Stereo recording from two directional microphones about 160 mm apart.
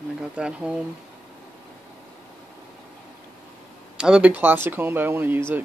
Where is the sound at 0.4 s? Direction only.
5° right (ahead or behind).